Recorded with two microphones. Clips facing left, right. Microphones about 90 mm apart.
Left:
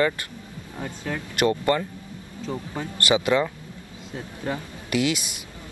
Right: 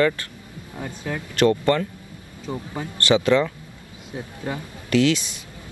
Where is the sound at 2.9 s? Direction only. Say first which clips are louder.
Right 3 dB; 15° left (ahead or behind).